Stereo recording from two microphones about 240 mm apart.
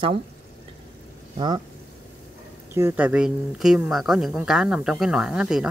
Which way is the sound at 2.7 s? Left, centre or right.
Centre.